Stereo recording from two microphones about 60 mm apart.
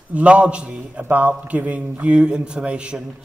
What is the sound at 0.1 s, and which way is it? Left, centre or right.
Speech, right.